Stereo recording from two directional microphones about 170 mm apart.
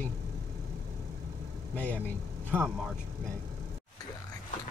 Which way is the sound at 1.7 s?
10° left (ahead or behind).